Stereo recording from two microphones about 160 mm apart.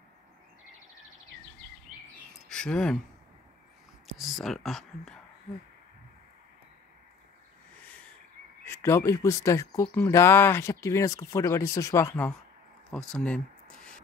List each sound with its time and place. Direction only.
2.4 s speech: 5° left (ahead or behind)
4.2 s speech: centre (ahead or behind)
8.6 s speech: 15° left (ahead or behind)